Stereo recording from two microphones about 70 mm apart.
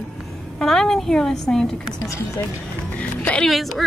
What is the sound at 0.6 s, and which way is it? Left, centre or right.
A woman's voice, centre.